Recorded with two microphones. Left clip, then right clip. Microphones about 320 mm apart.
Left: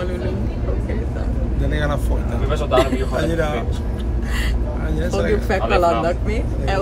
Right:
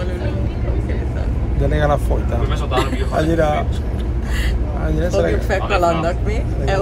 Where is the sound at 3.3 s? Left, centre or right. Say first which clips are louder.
Right 5 dB; centre.